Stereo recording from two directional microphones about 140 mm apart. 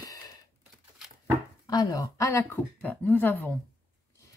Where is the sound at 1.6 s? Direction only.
25° left (ahead or behind).